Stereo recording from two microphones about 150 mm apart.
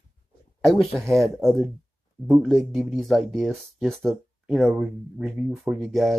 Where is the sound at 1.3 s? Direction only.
Centre (ahead or behind).